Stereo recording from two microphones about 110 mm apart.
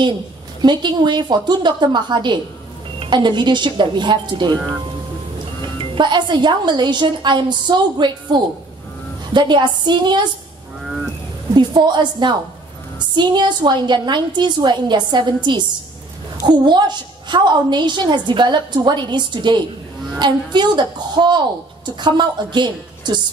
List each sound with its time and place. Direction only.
0.6 s a woman's voice: 40° right (ahead or behind)
5.9 s a woman's voice: 45° right (ahead or behind)
10.8 s a sound: 5° right (ahead or behind)
11.5 s a woman's voice: 45° right (ahead or behind)